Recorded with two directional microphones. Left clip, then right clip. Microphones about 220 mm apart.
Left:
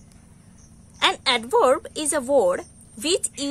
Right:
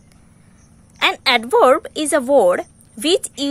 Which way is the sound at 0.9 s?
25° right (ahead or behind).